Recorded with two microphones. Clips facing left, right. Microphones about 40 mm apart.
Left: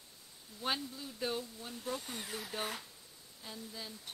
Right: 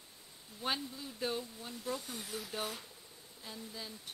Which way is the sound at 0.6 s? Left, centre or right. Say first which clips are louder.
Even; centre.